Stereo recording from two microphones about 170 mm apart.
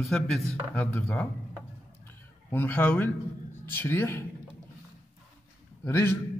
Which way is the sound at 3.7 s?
10° left (ahead or behind).